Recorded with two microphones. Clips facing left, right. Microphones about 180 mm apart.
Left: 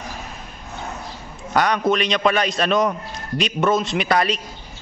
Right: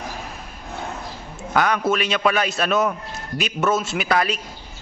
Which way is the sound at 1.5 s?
5° right (ahead or behind).